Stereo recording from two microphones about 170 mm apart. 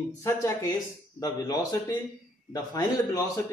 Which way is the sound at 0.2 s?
15° left (ahead or behind).